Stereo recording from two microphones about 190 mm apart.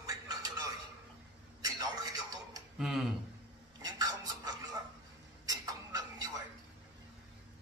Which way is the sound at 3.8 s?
20° right (ahead or behind).